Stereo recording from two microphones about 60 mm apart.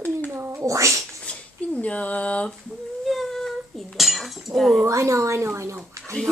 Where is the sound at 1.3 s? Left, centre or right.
Left.